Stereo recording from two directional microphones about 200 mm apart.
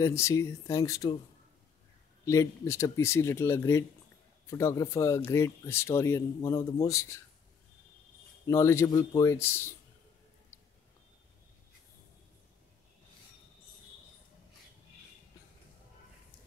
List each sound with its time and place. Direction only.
0.0 s speech: 15° left (ahead or behind)
2.2 s speech: 15° left (ahead or behind)
8.5 s speech: 15° left (ahead or behind)